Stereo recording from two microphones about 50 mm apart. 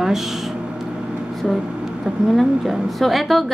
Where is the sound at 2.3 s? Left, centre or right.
Centre.